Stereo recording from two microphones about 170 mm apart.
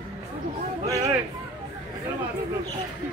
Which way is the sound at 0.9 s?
20° right (ahead or behind).